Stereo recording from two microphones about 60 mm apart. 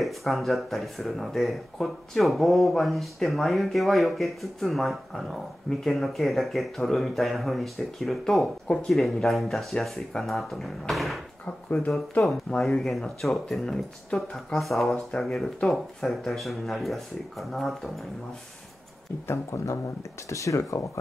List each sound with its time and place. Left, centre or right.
0.0 s speech: centre
12.6 s speech: centre
19.2 s speech: left